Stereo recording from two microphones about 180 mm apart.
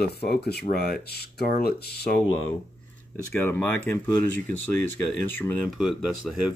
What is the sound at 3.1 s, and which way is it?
Speech, 10° left (ahead or behind).